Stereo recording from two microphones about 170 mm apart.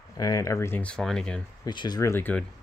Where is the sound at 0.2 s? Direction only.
20° left (ahead or behind); by 1.4 s 5° left (ahead or behind).